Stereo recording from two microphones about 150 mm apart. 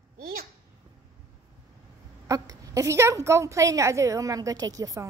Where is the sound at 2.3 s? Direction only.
25° right (ahead or behind).